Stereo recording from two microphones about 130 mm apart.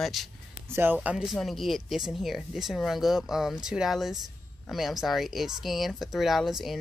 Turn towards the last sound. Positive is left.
turn(degrees=0)  # may be behind; listen again after turning